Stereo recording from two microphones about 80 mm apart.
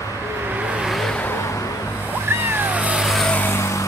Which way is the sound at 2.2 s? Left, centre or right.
Right.